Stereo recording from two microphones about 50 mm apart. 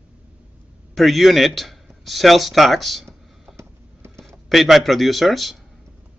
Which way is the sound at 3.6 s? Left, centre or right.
Right.